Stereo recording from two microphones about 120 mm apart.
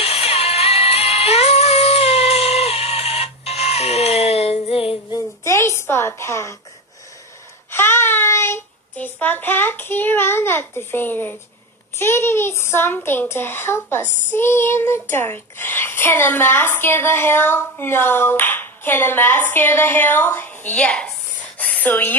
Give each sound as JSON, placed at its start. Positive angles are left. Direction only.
{"t": 0.0, "sound": "music", "side_deg": 60}
{"t": 5.1, "sound": "a sound", "side_deg": 25}
{"t": 7.7, "sound": "child singing", "side_deg": 20}
{"t": 12.0, "sound": "a child's voice", "side_deg": 20}
{"t": 14.3, "sound": "child singing", "side_deg": 20}
{"t": 21.5, "sound": "a sound", "side_deg": 15}